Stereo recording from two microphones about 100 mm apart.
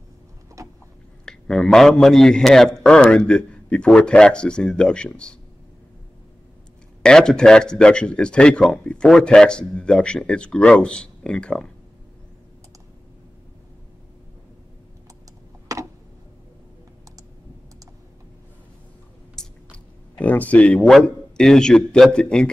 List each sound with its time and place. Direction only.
0.6 s vehicle: 30° right (ahead or behind)
1.2 s a man's voice: 5° left (ahead or behind)
7.0 s a man's voice: 5° left (ahead or behind)
15.7 s tick: 35° right (ahead or behind)
19.3 s chewing: 15° left (ahead or behind)
20.9 s a man's voice: 5° left (ahead or behind)